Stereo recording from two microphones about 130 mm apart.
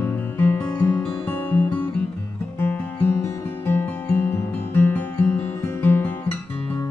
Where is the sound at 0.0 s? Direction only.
15° left (ahead or behind).